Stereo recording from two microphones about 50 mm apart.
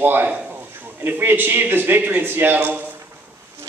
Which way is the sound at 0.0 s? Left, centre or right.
Right.